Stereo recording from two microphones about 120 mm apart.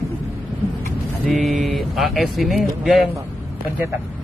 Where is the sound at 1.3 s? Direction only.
Centre (ahead or behind).